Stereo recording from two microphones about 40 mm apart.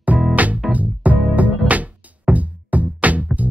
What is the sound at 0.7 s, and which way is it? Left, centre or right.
Music, right.